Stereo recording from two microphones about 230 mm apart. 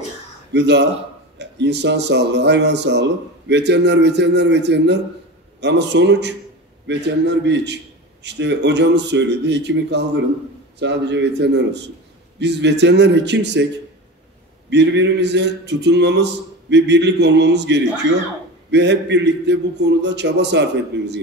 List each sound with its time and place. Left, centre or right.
0.5 s speech: right
14.7 s speech: right